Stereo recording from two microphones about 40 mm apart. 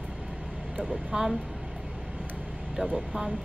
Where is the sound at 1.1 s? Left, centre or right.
Centre.